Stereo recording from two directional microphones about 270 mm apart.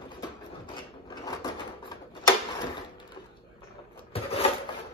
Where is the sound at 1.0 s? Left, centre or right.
Centre.